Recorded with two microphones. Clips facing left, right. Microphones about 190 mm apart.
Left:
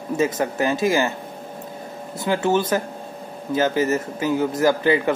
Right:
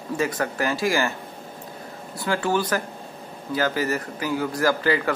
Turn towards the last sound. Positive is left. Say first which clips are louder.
# left 4 dB
turn(degrees=20)  # may be behind; listen again after turning